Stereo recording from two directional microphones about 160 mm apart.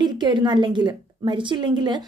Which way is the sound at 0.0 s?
25° right (ahead or behind).